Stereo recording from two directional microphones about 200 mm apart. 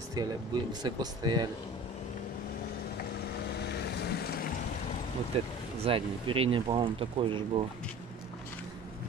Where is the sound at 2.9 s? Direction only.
50° left (ahead or behind).